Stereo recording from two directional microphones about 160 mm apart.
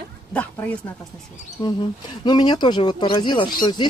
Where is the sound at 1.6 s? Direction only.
25° left (ahead or behind).